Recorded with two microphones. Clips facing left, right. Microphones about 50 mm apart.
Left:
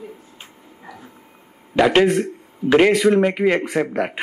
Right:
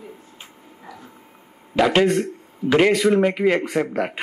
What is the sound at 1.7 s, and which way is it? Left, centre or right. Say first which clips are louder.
A man's voice: left 2 dB; centre.